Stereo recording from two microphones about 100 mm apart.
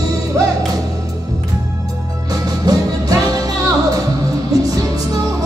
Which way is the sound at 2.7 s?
40° right (ahead or behind).